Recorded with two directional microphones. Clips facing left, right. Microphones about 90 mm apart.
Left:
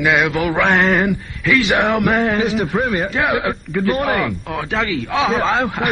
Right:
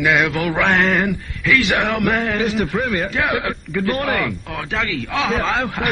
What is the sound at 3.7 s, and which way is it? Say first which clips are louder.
Mantra: left 2 dB; centre (ahead or behind).